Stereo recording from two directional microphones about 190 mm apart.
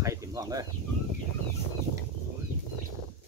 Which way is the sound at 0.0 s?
15° right (ahead or behind).